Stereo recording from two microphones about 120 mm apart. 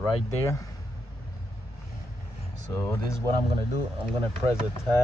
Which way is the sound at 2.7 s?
20° left (ahead or behind).